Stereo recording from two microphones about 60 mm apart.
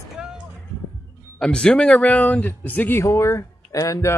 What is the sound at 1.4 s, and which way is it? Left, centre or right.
Speech, centre.